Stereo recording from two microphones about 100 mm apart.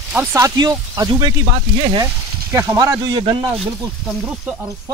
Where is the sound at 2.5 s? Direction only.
30° right (ahead or behind).